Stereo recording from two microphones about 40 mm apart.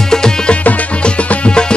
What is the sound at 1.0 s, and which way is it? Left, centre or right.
Music, left.